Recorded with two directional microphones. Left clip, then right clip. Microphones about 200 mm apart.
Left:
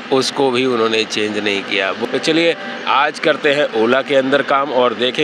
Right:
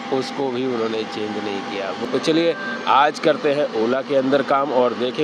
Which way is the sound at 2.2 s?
Centre (ahead or behind).